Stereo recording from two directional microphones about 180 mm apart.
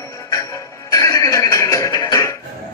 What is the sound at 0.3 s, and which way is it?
Music, 15° left (ahead or behind).